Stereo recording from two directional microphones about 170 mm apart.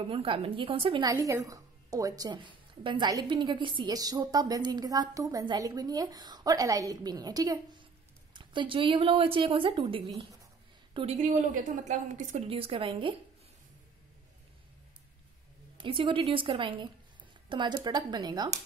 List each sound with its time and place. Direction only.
0.0 s a woman's voice: 30° right (ahead or behind)
10.9 s a sound: 30° right (ahead or behind)
11.1 s a woman's voice: 50° right (ahead or behind); by 13.1 s 30° right (ahead or behind)
15.8 s speech: 30° right (ahead or behind)